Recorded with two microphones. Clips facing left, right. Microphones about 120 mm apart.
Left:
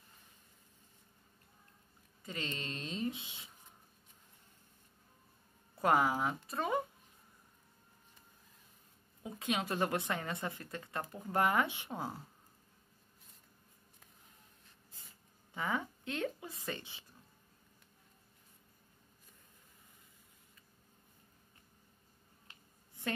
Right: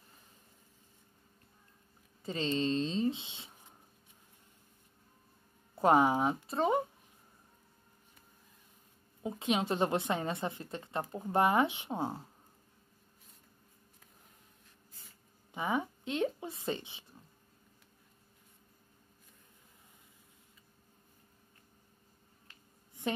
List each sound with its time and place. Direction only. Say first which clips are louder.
2.2 s a woman's voice: right 10 dB; 30° right (ahead or behind)
5.8 s a woman's voice: right 5 dB; 25° right (ahead or behind)
9.2 s a woman's voice: right 5 dB; 25° right (ahead or behind)
15.5 s a woman's voice: right 4 dB; 20° right (ahead or behind)